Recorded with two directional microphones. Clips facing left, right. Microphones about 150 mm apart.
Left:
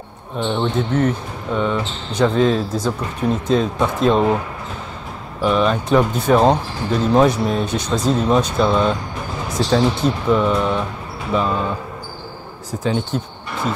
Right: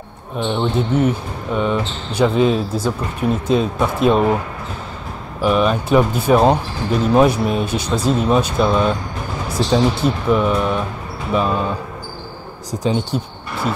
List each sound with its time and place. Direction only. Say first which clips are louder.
0.4 s speech: right 1 dB; 10° right (ahead or behind)
5.4 s speech: right 1 dB; 10° right (ahead or behind)
12.8 s speech: right 1 dB; 15° right (ahead or behind)